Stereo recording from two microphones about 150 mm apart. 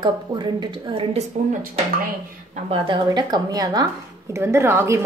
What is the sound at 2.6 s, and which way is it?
Speech, 35° right (ahead or behind).